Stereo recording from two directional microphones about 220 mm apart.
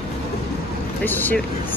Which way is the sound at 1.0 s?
10° left (ahead or behind).